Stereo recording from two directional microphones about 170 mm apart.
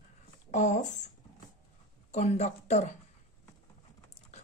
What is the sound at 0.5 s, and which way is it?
Speech, 45° left (ahead or behind).